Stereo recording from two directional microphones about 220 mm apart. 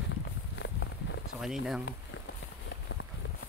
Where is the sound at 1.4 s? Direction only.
Centre (ahead or behind).